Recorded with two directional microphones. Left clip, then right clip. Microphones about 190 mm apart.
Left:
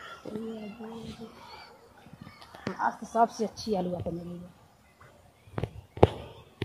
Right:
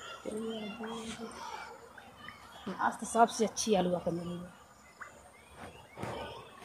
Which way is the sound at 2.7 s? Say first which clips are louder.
Left 2 dB; 20° left (ahead or behind).